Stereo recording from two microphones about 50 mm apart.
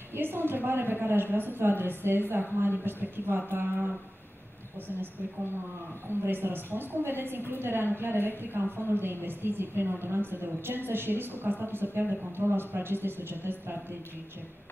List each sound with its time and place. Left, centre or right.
0.1 s a woman's voice: right
6.0 s a woman's voice: right